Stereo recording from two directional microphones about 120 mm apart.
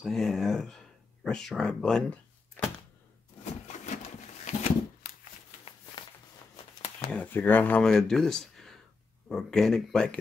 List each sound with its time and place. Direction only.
0.0 s speech: 5° left (ahead or behind)
3.6 s a sound: 85° left
7.1 s speech: 15° left (ahead or behind)
7.8 s speech: 5° left (ahead or behind)